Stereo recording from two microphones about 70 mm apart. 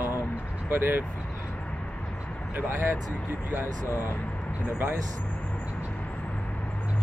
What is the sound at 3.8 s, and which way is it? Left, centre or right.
Speech, left.